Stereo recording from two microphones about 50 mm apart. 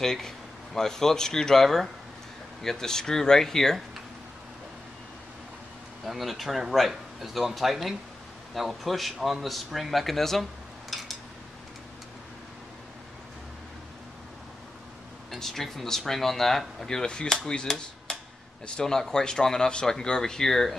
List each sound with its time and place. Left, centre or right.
0.0 s speech: centre
6.0 s speech: centre
10.9 s a sound: centre
15.3 s speech: centre
17.5 s hammer: centre
18.8 s speech: centre